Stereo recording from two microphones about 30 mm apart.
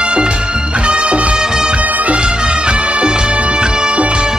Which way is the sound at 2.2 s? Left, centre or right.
Right.